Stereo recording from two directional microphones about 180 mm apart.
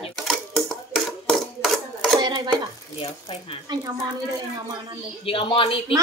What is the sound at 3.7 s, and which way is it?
Speech, 20° right (ahead or behind).